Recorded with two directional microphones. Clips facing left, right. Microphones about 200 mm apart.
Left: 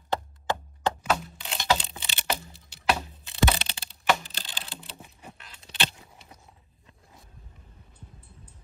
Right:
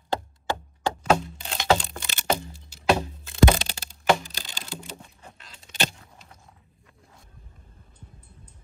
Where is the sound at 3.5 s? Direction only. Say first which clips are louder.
Right 5 dB; 45° right (ahead or behind).